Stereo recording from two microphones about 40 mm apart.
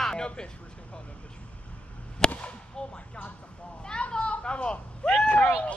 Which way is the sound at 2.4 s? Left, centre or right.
Left.